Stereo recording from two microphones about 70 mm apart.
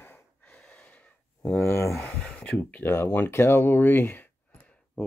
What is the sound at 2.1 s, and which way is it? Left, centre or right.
Speech, centre.